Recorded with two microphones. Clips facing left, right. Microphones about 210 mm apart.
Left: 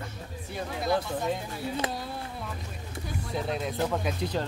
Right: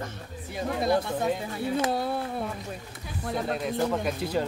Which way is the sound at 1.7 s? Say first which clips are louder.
Right 8 dB; 60° right (ahead or behind).